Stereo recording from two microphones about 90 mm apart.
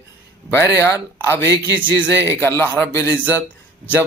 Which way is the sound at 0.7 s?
35° left (ahead or behind).